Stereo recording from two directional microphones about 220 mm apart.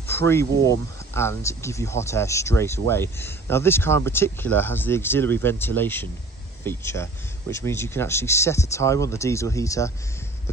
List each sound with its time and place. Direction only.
0.0 s speech: 10° left (ahead or behind)